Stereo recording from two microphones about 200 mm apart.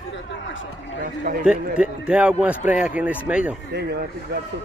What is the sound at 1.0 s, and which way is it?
Speech, 45° right (ahead or behind).